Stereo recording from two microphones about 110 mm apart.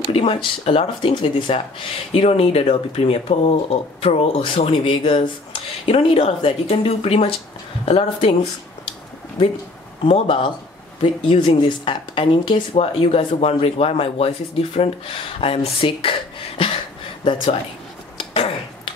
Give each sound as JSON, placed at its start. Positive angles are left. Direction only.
{"t": 0.1, "sound": "speech", "side_deg": 60}
{"t": 10.0, "sound": "a woman's voice", "side_deg": 55}
{"t": 12.7, "sound": "speech", "side_deg": 65}
{"t": 18.3, "sound": "finger snapping", "side_deg": 60}